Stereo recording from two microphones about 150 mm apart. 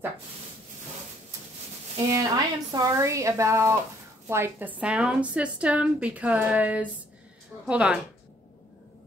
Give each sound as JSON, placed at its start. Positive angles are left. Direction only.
{"t": 2.0, "sound": "a woman's voice", "side_deg": -25}